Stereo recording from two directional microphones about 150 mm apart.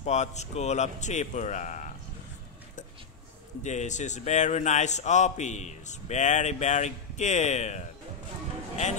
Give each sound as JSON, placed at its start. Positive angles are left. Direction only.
{"t": 0.0, "sound": "a man's voice", "side_deg": 50}
{"t": 3.6, "sound": "a man's voice", "side_deg": 50}